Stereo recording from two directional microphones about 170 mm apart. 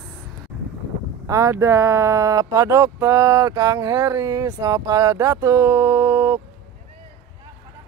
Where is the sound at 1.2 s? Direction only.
20° right (ahead or behind).